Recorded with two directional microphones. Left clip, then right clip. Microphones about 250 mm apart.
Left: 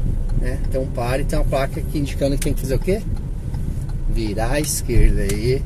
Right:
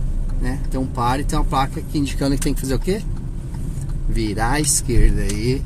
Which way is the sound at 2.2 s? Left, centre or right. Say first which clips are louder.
Even; right.